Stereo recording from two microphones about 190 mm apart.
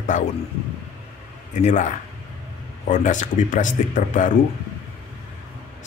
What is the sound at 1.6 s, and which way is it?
A man's voice, 40° left (ahead or behind).